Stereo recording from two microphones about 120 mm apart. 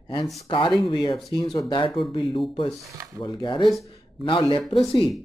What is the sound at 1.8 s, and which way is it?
Speech, 45° left (ahead or behind).